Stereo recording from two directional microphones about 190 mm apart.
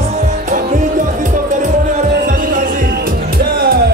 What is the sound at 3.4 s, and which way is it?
Music, 55° right (ahead or behind).